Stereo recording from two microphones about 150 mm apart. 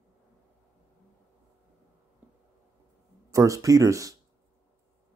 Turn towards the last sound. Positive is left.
turn(degrees=-20)  # may be behind; listen again after turning